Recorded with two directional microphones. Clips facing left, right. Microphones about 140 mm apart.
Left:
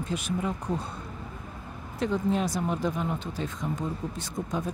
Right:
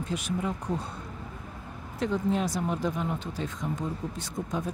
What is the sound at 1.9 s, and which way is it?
Speech, 25° left (ahead or behind).